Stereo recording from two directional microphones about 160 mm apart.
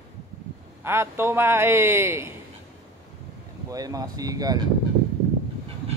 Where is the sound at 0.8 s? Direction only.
15° right (ahead or behind).